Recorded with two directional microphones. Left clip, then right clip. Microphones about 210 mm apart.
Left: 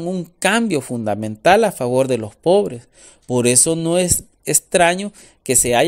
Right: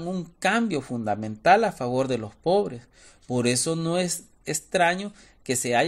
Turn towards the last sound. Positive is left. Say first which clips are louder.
# left 7 dB
turn(degrees=40)  # may be behind; listen again after turning